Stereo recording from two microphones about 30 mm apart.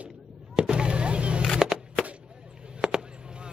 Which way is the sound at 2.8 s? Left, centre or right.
Right.